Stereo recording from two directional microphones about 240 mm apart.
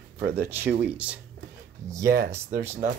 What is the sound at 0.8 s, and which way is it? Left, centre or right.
Speech, centre.